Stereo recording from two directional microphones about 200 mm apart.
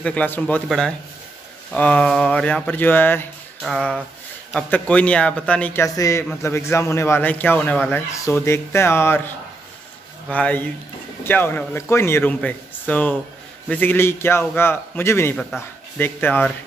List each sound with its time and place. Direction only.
0.0 s a man's voice: 5° left (ahead or behind)